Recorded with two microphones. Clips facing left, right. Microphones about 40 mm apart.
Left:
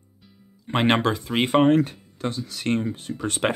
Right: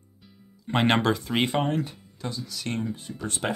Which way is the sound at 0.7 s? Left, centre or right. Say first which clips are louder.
Left 2 dB; centre.